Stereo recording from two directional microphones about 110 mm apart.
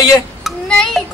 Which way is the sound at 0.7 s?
5° left (ahead or behind).